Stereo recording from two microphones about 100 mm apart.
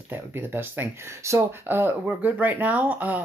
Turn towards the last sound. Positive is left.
turn(degrees=-20)  # may be behind; listen again after turning